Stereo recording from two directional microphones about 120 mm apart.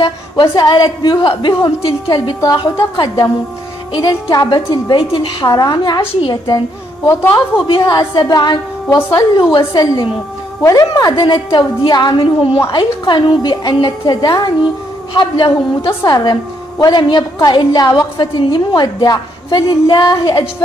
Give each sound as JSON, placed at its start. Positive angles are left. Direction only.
{"t": 0.0, "sound": "a woman's voice", "side_deg": 40}
{"t": 1.9, "sound": "a woman's voice", "side_deg": 25}
{"t": 2.2, "sound": "a woman's voice", "side_deg": 40}
{"t": 7.1, "sound": "a woman's voice", "side_deg": 25}
{"t": 7.6, "sound": "a woman's voice", "side_deg": 45}